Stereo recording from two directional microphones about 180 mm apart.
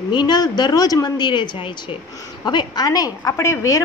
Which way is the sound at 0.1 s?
25° left (ahead or behind).